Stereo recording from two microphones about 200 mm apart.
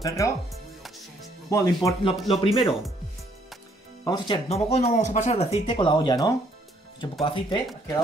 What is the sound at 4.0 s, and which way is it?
Speech, 20° left (ahead or behind).